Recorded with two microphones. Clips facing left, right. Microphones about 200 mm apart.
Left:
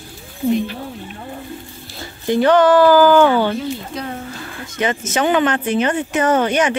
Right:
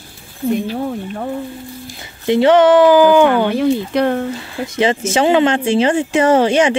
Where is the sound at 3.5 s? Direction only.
75° right (ahead or behind).